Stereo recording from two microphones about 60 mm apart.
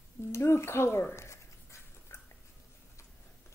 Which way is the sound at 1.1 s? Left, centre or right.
Left.